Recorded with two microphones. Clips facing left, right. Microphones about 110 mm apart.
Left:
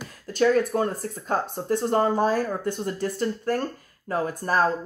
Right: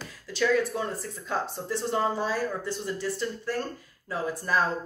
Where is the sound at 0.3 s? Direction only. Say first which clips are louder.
Left 4 dB; 50° left (ahead or behind).